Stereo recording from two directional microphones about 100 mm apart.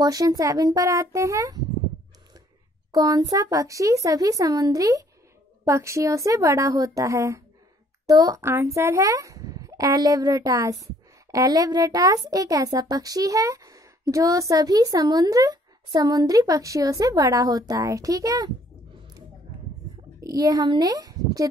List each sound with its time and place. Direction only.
0.0 s a woman's voice: 40° right (ahead or behind)
2.9 s a woman's voice: 40° right (ahead or behind)
8.5 s a woman's voice: 25° right (ahead or behind)
20.2 s a child's voice: 40° right (ahead or behind)